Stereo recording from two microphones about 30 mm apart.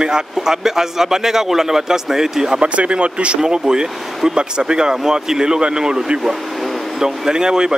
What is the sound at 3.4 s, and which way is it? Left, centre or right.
Speech, right.